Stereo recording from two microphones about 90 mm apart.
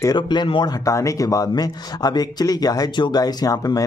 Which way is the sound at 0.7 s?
35° left (ahead or behind).